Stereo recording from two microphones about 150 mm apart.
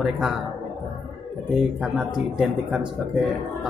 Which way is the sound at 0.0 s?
5° right (ahead or behind).